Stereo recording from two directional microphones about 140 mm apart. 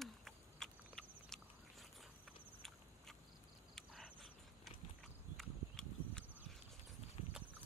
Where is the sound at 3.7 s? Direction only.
Centre (ahead or behind).